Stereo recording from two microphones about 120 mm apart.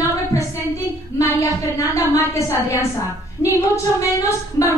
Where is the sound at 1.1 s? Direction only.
30° left (ahead or behind).